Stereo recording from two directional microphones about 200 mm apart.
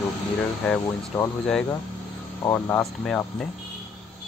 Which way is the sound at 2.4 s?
15° left (ahead or behind).